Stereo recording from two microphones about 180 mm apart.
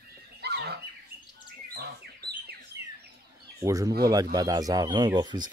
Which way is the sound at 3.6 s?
20° right (ahead or behind).